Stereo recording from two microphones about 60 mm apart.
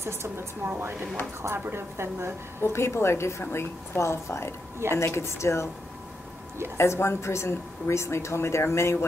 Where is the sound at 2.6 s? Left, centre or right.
Left.